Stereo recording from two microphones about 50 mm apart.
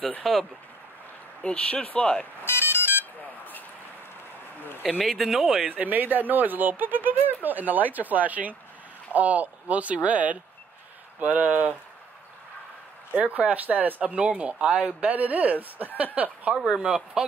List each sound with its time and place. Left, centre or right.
0.2 s speech: centre
1.4 s speech: left
2.4 s ringtone: left
4.9 s speech: centre
5.7 s speech: right
13.1 s speech: right
16.5 s speech: centre